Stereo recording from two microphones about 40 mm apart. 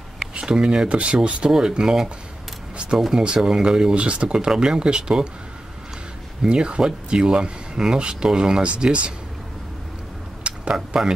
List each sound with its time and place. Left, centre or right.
0.3 s speech: right
1.8 s speech: centre
3.1 s speech: centre
6.4 s speech: right
10.4 s tick-tock: right